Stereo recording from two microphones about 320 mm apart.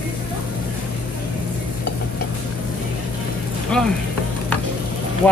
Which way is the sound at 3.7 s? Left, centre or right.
Centre.